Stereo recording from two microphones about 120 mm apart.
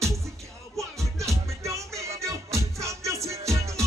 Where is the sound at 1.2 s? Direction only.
25° right (ahead or behind).